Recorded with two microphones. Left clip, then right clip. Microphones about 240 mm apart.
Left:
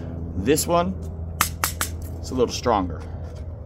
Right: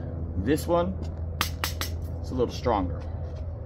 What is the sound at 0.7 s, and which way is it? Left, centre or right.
Speech, left.